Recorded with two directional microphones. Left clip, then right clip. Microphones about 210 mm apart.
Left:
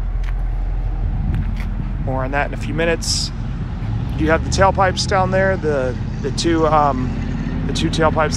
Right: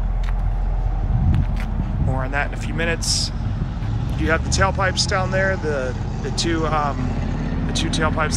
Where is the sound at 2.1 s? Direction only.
Centre (ahead or behind).